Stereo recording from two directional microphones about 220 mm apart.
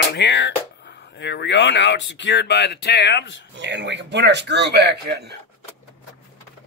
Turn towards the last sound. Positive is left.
turn(degrees=-50)  # may be behind; listen again after turning